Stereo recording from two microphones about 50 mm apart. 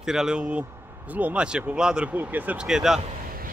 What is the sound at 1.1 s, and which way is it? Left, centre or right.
Speech, right.